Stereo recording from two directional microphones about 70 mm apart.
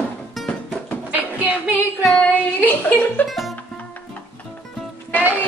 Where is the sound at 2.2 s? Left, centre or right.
Left.